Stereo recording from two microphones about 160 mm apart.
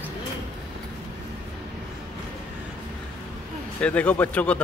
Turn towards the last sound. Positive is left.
turn(degrees=10)  # may be behind; listen again after turning